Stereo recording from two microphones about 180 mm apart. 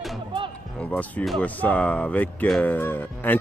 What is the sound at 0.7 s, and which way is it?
Speech, 5° left (ahead or behind).